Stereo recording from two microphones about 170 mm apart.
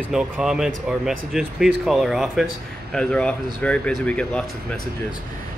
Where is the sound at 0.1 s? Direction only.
5° right (ahead or behind).